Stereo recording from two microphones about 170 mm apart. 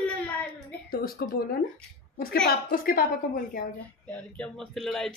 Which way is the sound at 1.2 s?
65° left (ahead or behind).